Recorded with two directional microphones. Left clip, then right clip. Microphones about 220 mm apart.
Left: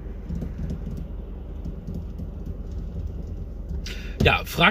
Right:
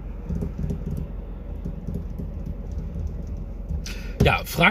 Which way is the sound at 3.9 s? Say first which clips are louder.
Left 1 dB; 20° right (ahead or behind).